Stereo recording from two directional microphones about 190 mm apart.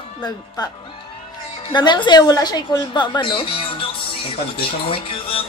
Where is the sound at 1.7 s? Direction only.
25° left (ahead or behind).